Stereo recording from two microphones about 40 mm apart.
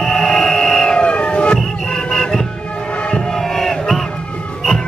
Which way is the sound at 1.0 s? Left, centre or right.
Left.